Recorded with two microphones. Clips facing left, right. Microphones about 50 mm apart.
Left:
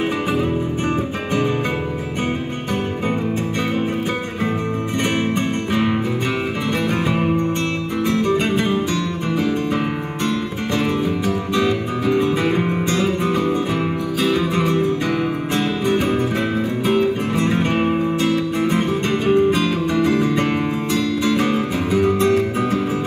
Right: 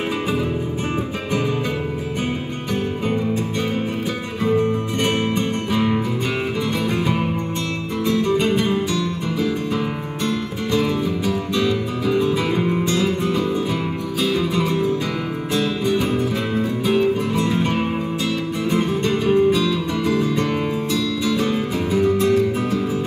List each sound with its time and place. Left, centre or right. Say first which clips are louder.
4.5 s music: right 8 dB; left
8.0 s music: even; left
10.8 s music: left 2 dB; left